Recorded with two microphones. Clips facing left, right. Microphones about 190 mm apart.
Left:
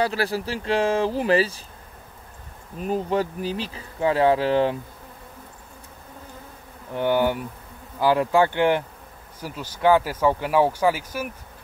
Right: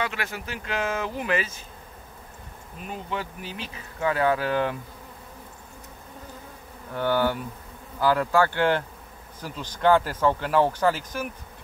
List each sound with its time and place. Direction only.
0.0 s speech: 35° left (ahead or behind)
2.8 s speech: 40° left (ahead or behind)
6.9 s speech: 15° left (ahead or behind)